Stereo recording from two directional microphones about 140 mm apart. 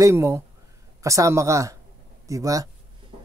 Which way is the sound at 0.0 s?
20° right (ahead or behind).